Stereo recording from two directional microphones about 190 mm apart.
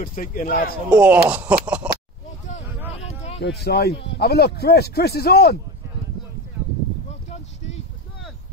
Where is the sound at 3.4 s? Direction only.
60° left (ahead or behind).